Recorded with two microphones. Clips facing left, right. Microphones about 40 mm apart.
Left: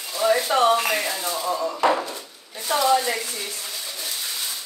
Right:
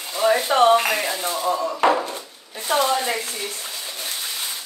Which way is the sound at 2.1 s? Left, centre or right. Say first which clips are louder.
Right 2 dB; right.